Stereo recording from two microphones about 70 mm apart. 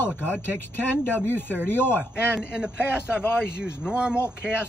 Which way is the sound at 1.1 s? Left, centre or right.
Left.